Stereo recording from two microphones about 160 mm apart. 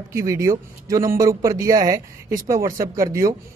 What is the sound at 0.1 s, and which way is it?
A man's voice, 20° right (ahead or behind).